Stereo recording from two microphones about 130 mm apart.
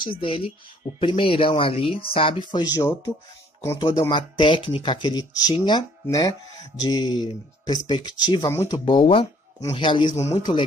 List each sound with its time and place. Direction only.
0.0 s speech: 40° left (ahead or behind)
2.7 s speech: 25° left (ahead or behind)
3.7 s speech: 35° left (ahead or behind)
10.1 s speech: 55° left (ahead or behind)